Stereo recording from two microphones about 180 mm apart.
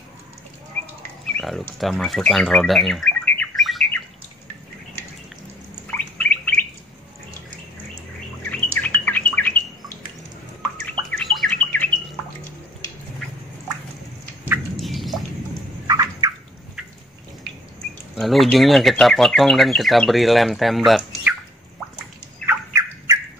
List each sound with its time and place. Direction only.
1.2 s bird: centre (ahead or behind)
5.9 s bird: 10° left (ahead or behind)
8.5 s bird: 10° left (ahead or behind)
10.9 s bird: 5° left (ahead or behind)
14.8 s bird: centre (ahead or behind)
15.9 s bird: 20° right (ahead or behind)
18.1 s speech: centre (ahead or behind)
22.5 s turkey: 15° right (ahead or behind)